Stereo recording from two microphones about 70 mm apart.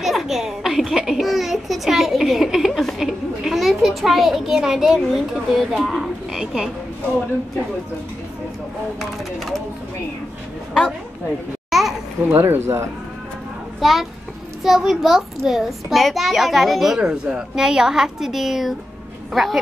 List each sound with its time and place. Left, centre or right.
0.0 s a child's voice: centre
10.7 s speech: centre
11.7 s babbling: centre
12.4 s speech: right
13.7 s a child's voice: centre